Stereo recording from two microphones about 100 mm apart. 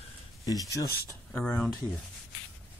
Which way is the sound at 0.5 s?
35° left (ahead or behind).